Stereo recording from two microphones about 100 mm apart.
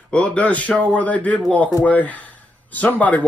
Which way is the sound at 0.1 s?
10° left (ahead or behind).